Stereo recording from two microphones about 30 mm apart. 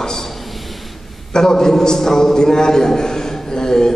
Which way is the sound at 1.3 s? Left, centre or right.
Centre.